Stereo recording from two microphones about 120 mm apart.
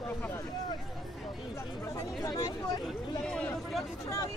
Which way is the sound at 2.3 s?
35° left (ahead or behind).